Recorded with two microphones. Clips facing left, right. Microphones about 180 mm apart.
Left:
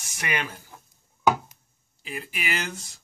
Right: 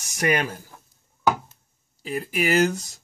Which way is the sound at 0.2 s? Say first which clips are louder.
Right 8 dB; 40° right (ahead or behind).